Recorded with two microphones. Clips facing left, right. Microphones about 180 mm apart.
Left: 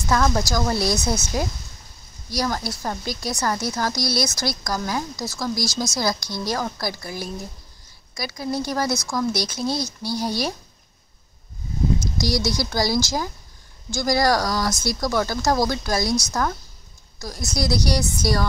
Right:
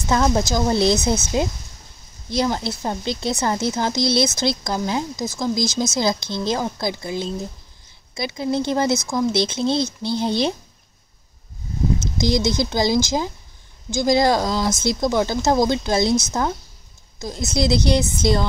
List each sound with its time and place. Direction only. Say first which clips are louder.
0.1 s a woman's voice: right 2 dB; 20° right (ahead or behind)
12.0 s a woman's voice: right 4 dB; 20° right (ahead or behind)